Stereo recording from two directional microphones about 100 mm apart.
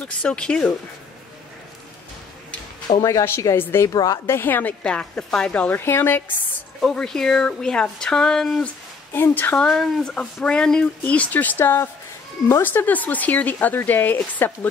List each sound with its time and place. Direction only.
0.0 s speech: 10° left (ahead or behind)
3.0 s speech: 35° left (ahead or behind)
3.3 s a woman's voice: 25° left (ahead or behind)
4.3 s a woman's voice: 20° left (ahead or behind)
4.8 s speech: 10° left (ahead or behind)
6.8 s speech: 5° left (ahead or behind)
9.1 s speech: 20° left (ahead or behind)
9.7 s speech: 5° left (ahead or behind)